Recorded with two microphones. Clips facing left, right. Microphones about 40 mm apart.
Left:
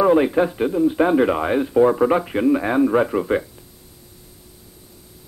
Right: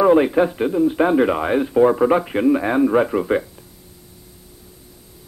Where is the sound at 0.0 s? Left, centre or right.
Centre.